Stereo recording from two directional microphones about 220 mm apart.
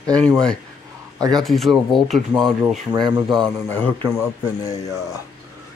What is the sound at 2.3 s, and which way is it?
Speech, 20° right (ahead or behind).